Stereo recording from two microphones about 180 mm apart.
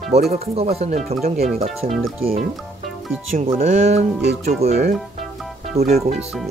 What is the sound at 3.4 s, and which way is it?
Speech, 45° right (ahead or behind).